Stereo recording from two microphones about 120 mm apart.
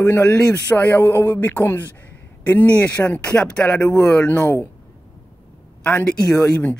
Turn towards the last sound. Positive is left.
turn(degrees=15)  # may be behind; listen again after turning